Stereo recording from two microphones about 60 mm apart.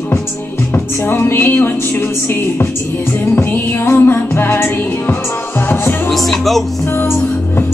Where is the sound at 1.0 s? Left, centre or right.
Left.